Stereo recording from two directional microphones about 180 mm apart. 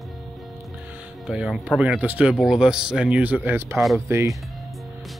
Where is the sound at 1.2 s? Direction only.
5° right (ahead or behind).